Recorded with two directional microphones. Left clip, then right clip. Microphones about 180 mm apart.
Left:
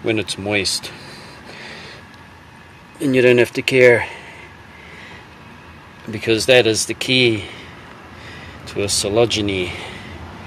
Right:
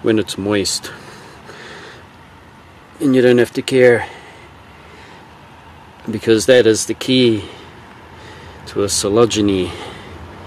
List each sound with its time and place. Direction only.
0.0 s speech: 35° right (ahead or behind)
3.0 s speech: 15° right (ahead or behind)
6.1 s speech: 30° right (ahead or behind)
8.7 s speech: 35° right (ahead or behind)